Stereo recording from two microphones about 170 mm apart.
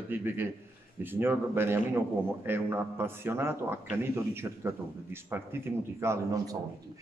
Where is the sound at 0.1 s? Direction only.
10° right (ahead or behind).